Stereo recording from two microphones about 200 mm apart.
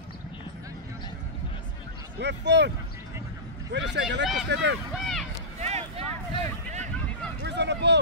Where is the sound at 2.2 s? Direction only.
60° right (ahead or behind).